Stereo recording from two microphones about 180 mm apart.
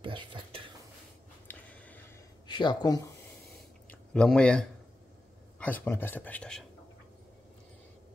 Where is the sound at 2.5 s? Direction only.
25° left (ahead or behind).